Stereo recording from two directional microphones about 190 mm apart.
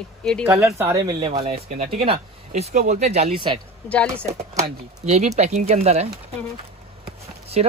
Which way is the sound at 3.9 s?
5° left (ahead or behind).